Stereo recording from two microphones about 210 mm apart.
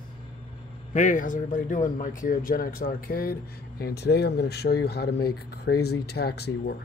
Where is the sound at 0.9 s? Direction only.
40° left (ahead or behind).